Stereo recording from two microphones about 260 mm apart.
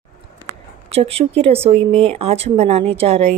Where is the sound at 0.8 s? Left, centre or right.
Right.